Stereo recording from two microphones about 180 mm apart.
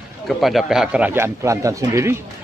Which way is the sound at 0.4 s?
Centre (ahead or behind).